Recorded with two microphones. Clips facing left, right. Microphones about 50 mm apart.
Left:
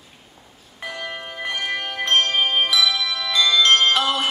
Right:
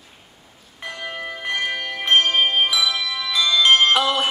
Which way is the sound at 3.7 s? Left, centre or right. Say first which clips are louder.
Right 1 dB; centre.